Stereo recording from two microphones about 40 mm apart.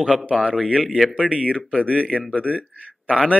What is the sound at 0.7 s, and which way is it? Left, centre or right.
Speech, centre.